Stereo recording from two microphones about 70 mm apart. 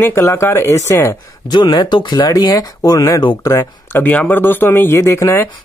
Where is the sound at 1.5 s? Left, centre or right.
Left.